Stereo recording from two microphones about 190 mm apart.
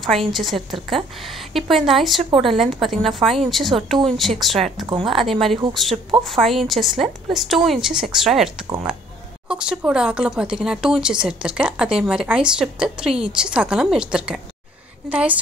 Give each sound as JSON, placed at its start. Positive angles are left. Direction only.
{"t": 0.3, "sound": "speech", "side_deg": 0}
{"t": 4.8, "sound": "speech", "side_deg": -25}
{"t": 5.1, "sound": "a woman's voice", "side_deg": 0}